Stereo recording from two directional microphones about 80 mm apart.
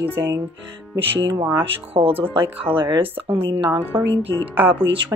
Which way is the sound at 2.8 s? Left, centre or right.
Right.